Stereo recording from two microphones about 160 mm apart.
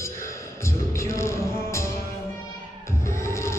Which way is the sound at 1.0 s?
20° left (ahead or behind).